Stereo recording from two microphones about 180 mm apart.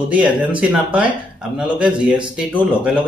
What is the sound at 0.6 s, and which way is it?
Speech, 5° right (ahead or behind).